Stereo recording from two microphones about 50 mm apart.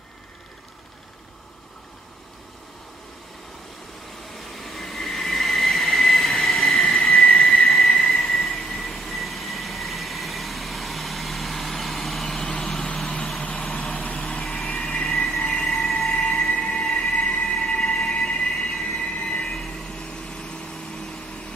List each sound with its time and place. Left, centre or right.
4.3 s train: centre
7.6 s a sound: centre
8.0 s vehicle: centre
14.0 s vehicle: left
15.0 s train: centre
18.9 s train: centre
19.8 s vehicle: centre